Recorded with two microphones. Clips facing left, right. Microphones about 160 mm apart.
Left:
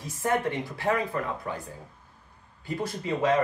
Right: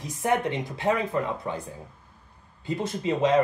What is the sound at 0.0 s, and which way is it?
Speech, 20° right (ahead or behind).